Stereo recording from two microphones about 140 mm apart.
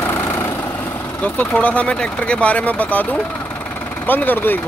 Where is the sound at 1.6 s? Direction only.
10° left (ahead or behind).